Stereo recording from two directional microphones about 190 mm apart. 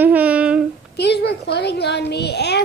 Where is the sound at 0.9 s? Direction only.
60° left (ahead or behind).